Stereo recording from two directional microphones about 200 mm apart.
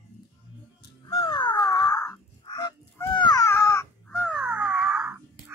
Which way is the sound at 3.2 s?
20° left (ahead or behind).